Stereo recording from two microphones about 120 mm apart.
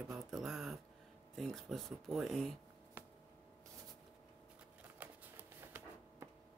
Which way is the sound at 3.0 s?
15° right (ahead or behind).